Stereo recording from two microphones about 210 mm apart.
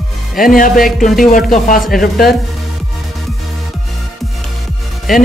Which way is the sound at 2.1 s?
Centre (ahead or behind).